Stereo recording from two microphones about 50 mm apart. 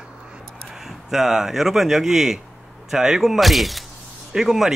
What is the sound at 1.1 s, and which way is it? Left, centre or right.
Speech, centre.